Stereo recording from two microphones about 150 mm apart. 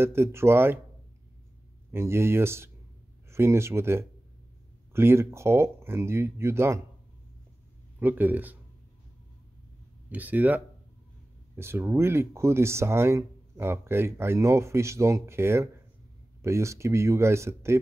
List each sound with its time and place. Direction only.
0.0 s speech: 15° right (ahead or behind)
1.9 s speech: 15° right (ahead or behind)
8.0 s speech: 10° right (ahead or behind)
10.0 s speech: 10° right (ahead or behind)